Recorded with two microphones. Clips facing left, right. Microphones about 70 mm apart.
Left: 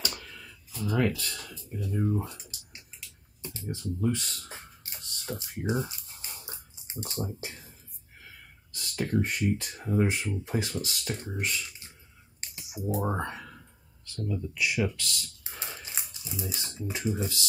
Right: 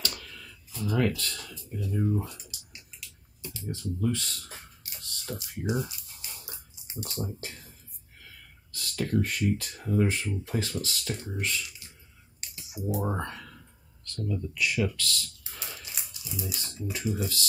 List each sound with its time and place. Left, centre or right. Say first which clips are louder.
0.0 s a sound: even; centre
0.8 s speech: even; centre
1.7 s a sound: even; centre; by 3.6 s left
3.7 s computer keyboard: even; left
8.3 s speech: even; centre
12.4 s clicking: even; left
12.9 s speech: left 1 dB; centre